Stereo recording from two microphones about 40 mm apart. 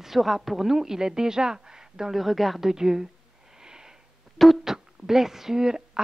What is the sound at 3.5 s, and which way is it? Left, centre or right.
Wheeze, centre.